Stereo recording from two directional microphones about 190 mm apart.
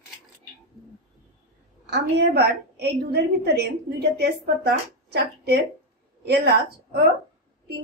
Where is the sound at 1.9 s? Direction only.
60° right (ahead or behind).